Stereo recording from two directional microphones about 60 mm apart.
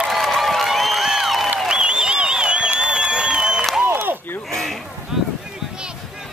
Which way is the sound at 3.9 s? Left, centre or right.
Right.